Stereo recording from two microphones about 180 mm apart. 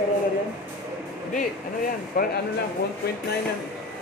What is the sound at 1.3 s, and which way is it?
Speech, 50° left (ahead or behind).